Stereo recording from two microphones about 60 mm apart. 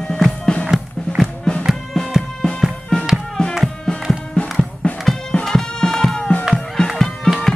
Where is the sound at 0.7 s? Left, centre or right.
Centre.